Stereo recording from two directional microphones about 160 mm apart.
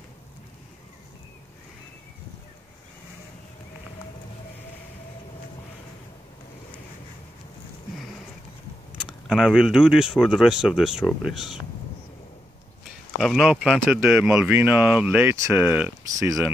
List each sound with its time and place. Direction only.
9.3 s speech: 5° right (ahead or behind)
13.2 s speech: centre (ahead or behind); by 16.5 s 20° right (ahead or behind)